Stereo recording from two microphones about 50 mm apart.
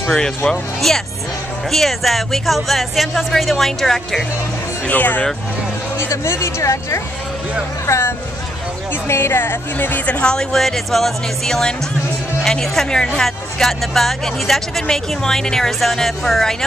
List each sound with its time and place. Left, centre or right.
0.5 s speech: centre
4.8 s speech: left
5.9 s speech: left
9.0 s a woman's voice: left
10.1 s speech: centre